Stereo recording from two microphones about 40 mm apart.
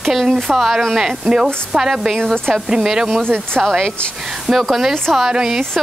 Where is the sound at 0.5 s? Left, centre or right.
Centre.